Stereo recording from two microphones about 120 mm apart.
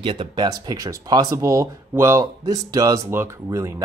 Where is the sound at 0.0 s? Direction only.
45° right (ahead or behind).